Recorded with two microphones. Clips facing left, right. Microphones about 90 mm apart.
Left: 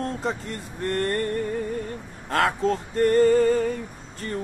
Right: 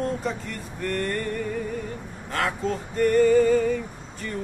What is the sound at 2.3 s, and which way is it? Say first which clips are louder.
Music: left 4 dB; 45° left (ahead or behind).